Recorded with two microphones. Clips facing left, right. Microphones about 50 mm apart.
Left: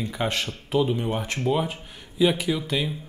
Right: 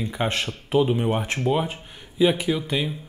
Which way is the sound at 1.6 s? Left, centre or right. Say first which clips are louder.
Even; centre.